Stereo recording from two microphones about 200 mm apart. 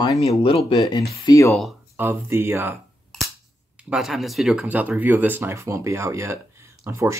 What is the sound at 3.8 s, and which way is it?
Speech, 5° right (ahead or behind).